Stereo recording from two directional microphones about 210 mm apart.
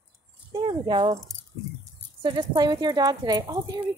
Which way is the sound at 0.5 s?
20° right (ahead or behind).